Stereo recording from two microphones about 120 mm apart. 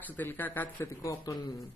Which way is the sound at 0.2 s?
15° left (ahead or behind).